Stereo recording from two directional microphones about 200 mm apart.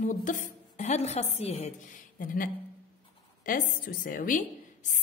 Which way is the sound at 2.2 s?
45° left (ahead or behind).